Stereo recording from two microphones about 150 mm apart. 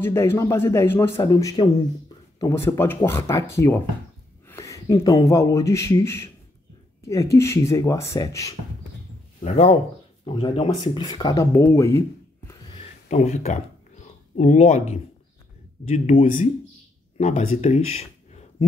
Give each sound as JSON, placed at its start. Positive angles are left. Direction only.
{"t": 0.0, "sound": "a man's voice", "side_deg": 15}
{"t": 9.4, "sound": "speech", "side_deg": 45}
{"t": 10.7, "sound": "speech", "side_deg": 30}
{"t": 13.1, "sound": "speech", "side_deg": 50}